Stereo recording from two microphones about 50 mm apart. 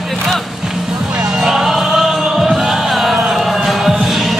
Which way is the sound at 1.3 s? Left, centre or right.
Centre.